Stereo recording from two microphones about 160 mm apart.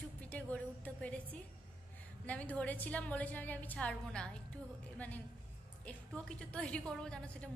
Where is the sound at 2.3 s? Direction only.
10° left (ahead or behind).